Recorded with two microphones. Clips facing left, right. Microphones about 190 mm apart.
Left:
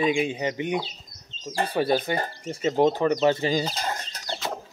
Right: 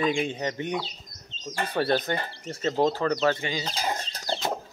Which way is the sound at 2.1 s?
45° left (ahead or behind).